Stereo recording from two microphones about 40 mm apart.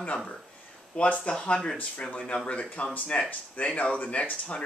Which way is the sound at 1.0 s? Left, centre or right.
Left.